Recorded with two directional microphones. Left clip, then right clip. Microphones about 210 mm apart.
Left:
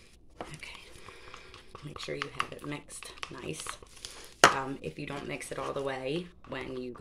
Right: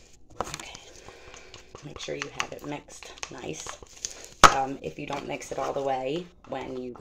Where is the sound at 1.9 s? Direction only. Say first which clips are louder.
Right 3 dB; 25° left (ahead or behind).